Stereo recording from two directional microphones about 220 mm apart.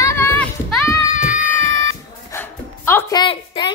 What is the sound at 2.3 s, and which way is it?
Dog, 10° left (ahead or behind).